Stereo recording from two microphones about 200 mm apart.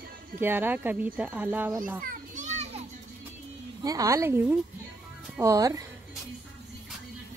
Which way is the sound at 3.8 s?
15° right (ahead or behind).